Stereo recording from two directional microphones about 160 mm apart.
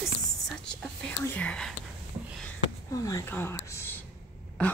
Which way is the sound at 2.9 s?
20° left (ahead or behind).